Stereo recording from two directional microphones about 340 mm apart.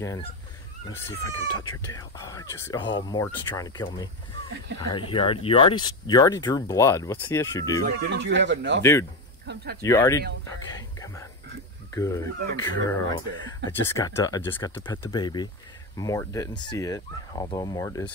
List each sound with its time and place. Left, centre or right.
0.0 s speech: centre
7.8 s speech: right
9.8 s speech: centre